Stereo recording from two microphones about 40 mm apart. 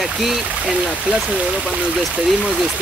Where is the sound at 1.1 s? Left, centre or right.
Right.